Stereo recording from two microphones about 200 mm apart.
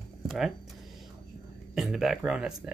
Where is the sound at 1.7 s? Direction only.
Centre (ahead or behind).